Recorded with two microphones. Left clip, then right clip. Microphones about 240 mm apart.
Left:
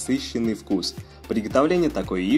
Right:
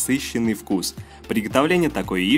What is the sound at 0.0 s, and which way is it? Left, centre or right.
Speech, right.